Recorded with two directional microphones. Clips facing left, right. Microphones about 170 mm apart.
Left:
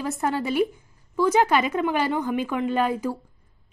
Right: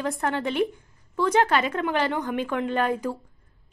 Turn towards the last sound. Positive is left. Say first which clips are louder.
# left 1 dB
turn(degrees=10)  # may be behind; listen again after turning